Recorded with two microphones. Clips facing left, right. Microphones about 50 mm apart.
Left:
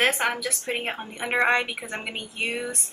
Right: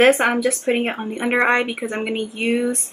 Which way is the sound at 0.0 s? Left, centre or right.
Centre.